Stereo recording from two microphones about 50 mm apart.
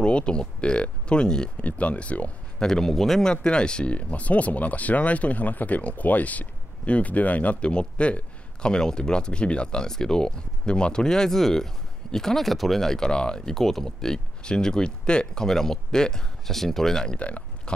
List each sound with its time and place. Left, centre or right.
0.0 s speech: centre
1.6 s speech: left
2.6 s speech: centre